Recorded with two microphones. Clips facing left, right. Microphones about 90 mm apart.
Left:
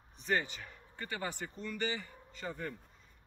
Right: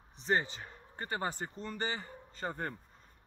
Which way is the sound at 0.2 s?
30° right (ahead or behind).